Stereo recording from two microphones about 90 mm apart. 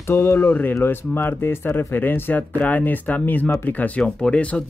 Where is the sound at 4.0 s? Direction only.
10° left (ahead or behind).